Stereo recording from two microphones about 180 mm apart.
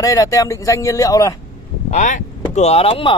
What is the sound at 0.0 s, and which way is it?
Speech, 20° left (ahead or behind).